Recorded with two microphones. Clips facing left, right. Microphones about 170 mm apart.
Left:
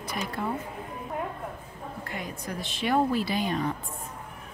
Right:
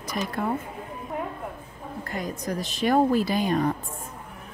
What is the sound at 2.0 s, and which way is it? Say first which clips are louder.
A woman's voice: right 7 dB; 40° right (ahead or behind).